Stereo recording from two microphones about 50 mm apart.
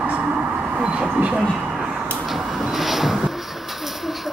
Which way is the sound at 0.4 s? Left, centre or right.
Right.